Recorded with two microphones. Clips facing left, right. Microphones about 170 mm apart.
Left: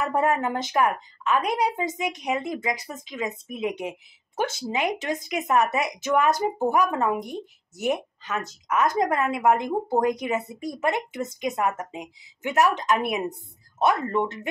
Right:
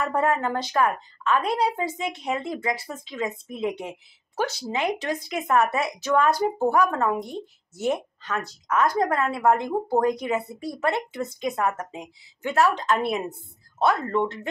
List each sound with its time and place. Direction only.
0.0 s a woman's voice: 20° left (ahead or behind)